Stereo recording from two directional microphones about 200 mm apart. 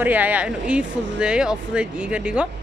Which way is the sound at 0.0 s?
10° right (ahead or behind).